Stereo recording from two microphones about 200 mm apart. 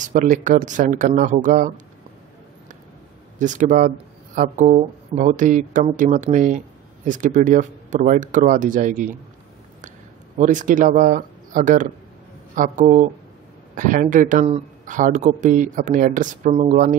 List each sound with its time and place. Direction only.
0.0 s speech: 40° right (ahead or behind)
3.3 s speech: 40° right (ahead or behind)
10.3 s speech: 40° right (ahead or behind)